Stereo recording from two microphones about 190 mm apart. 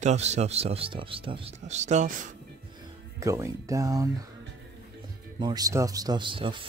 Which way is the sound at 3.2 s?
15° right (ahead or behind).